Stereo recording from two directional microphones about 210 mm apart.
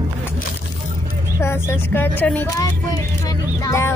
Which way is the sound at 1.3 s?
10° left (ahead or behind).